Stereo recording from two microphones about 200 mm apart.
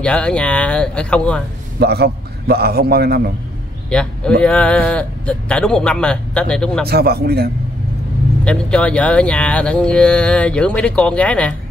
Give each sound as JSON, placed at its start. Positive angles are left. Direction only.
{"t": 0.0, "sound": "speech", "side_deg": 5}
{"t": 1.8, "sound": "a man's voice", "side_deg": -55}
{"t": 3.9, "sound": "a man's voice", "side_deg": 5}
{"t": 6.9, "sound": "a man's voice", "side_deg": -50}
{"t": 8.5, "sound": "speech", "side_deg": 5}